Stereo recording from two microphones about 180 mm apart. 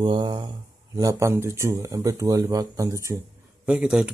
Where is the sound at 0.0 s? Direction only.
25° right (ahead or behind).